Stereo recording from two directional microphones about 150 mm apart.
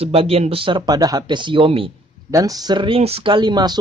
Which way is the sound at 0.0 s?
40° right (ahead or behind).